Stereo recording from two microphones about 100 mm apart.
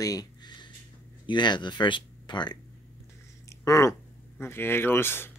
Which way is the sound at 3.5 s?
30° left (ahead or behind).